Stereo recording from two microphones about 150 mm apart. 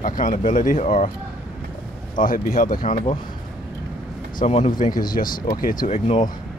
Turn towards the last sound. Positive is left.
turn(degrees=45)  # may be behind; listen again after turning